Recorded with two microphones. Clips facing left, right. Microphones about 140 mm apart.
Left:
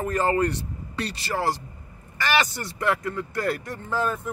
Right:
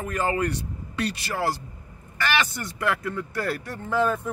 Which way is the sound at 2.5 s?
30° left (ahead or behind).